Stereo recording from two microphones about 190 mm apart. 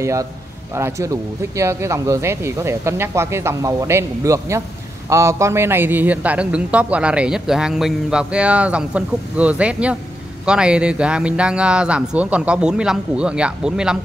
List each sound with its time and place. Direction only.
0.0 s a man's voice: 15° right (ahead or behind)